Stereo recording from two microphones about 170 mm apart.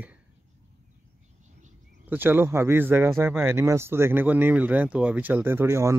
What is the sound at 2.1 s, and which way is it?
Speech, 10° right (ahead or behind).